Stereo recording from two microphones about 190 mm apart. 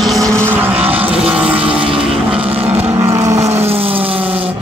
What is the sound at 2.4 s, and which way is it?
Vehicle, 30° right (ahead or behind).